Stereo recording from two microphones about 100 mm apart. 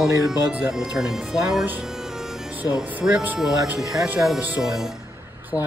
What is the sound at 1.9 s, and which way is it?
Music, 5° right (ahead or behind).